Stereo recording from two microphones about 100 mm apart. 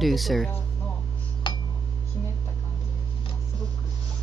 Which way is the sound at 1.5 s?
55° left (ahead or behind).